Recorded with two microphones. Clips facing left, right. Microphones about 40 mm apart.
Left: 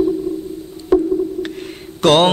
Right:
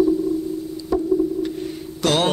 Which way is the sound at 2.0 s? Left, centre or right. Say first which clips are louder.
Left 7 dB; left.